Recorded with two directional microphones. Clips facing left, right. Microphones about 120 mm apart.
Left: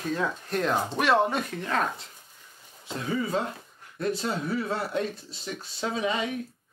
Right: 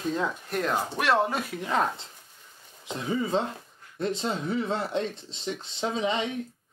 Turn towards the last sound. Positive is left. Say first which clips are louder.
# right 1 dB
turn(degrees=-25)  # may be behind; listen again after turning